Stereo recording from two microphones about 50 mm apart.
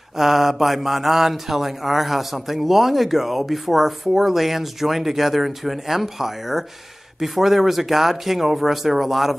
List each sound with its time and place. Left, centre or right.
0.2 s speech: centre